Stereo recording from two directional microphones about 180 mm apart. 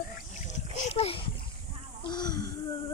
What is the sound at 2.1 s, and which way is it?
Speech, 25° left (ahead or behind).